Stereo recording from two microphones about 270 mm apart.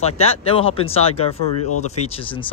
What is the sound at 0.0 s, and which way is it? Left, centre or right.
Speech, left.